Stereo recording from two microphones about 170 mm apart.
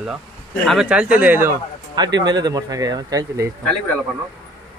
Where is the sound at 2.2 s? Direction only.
25° right (ahead or behind).